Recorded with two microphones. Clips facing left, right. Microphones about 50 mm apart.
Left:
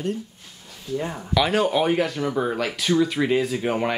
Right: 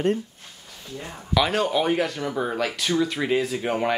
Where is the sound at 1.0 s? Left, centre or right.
Centre.